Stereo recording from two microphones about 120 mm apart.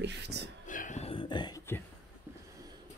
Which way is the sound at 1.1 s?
40° left (ahead or behind).